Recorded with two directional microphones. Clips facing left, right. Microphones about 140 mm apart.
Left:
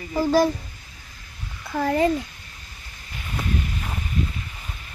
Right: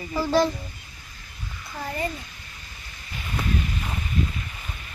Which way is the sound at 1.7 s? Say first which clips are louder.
Left 10 dB; 75° left (ahead or behind).